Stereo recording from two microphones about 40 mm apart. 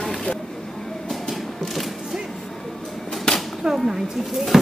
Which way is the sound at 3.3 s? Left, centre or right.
Centre.